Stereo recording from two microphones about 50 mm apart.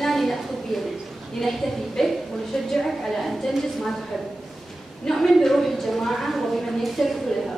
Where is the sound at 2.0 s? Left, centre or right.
Centre.